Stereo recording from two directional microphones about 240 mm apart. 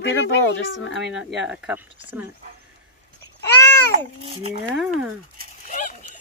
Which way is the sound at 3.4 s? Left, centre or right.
Centre.